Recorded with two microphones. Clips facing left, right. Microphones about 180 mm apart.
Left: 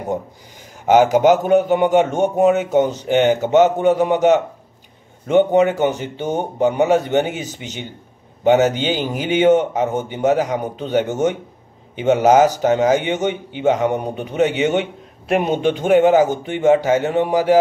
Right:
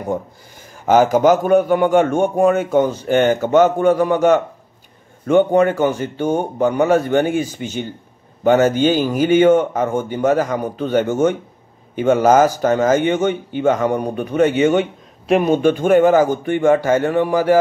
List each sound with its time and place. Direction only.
0.8 s a man's voice: 15° left (ahead or behind)